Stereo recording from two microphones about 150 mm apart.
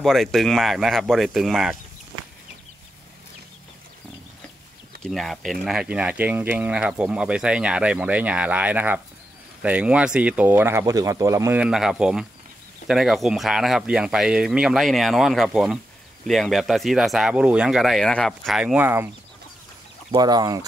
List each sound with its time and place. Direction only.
0.0 s speech: centre (ahead or behind)
5.0 s speech: centre (ahead or behind); by 11.5 s 20° right (ahead or behind)
11.5 s speech: 5° right (ahead or behind)
20.1 s speech: 25° right (ahead or behind)